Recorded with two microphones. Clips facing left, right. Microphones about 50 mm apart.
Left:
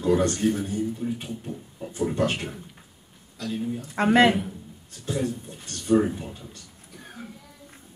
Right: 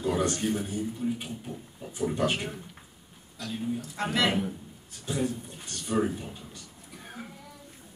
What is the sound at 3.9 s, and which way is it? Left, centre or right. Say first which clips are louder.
Speech: left 10 dB; left.